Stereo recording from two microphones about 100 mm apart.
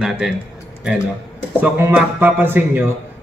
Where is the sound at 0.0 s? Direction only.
5° right (ahead or behind).